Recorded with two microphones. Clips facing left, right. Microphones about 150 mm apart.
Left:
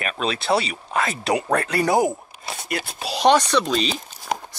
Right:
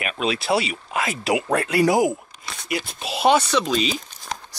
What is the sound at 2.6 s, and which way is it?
Speech, 55° left (ahead or behind).